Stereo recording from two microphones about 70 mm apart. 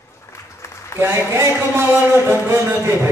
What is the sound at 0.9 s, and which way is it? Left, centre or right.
Speech, right.